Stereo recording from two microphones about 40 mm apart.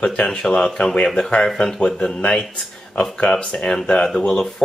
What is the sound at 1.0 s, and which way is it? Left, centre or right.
Speech, centre.